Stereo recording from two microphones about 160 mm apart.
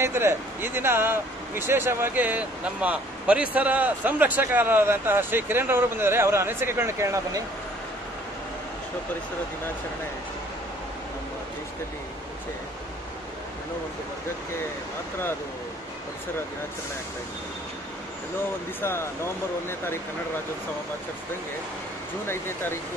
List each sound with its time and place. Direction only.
0.0 s speech: 15° right (ahead or behind)
18.8 s speech: 15° left (ahead or behind)
22.3 s speech: 15° left (ahead or behind)